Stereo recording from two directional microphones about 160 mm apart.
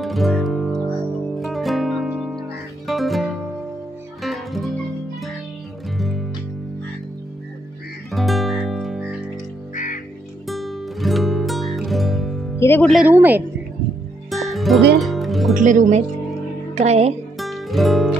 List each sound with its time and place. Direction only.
0.0 s music: centre (ahead or behind)
5.9 s music: centre (ahead or behind)
8.1 s music: centre (ahead or behind)
10.5 s music: centre (ahead or behind)
12.5 s music: 15° left (ahead or behind)
12.9 s a woman's voice: 10° right (ahead or behind)
14.3 s music: centre (ahead or behind)
15.5 s speech: 50° right (ahead or behind)
17.4 s music: centre (ahead or behind)